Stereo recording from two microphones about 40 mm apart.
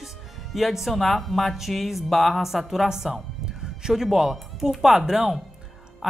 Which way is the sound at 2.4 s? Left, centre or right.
Centre.